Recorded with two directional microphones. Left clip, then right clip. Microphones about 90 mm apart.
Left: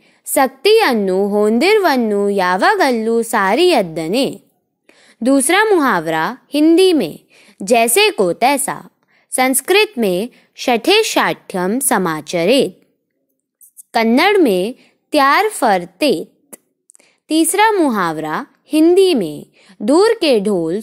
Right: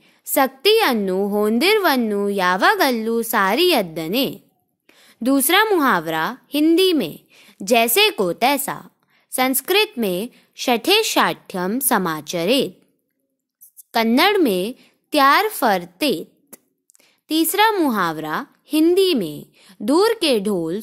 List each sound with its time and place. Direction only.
0.0 s a woman's voice: 30° left (ahead or behind)
4.8 s a sound: 30° left (ahead or behind)
5.8 s a woman's voice: 35° left (ahead or behind)
13.9 s a woman's voice: 30° left (ahead or behind)
17.9 s a woman's voice: 30° left (ahead or behind)